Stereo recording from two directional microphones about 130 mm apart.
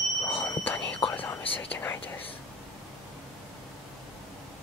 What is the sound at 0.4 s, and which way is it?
Whispering, 15° left (ahead or behind).